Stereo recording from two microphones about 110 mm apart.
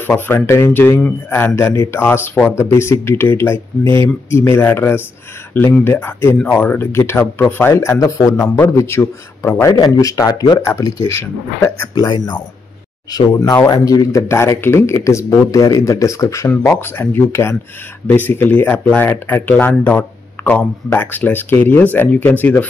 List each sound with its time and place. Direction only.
0.0 s speech: 20° left (ahead or behind)
11.9 s speech: 40° left (ahead or behind); by 22.5 s 15° left (ahead or behind)